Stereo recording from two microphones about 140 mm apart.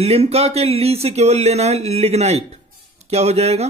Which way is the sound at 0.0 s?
45° right (ahead or behind).